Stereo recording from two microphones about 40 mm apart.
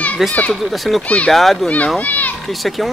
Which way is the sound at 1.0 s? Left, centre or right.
Left.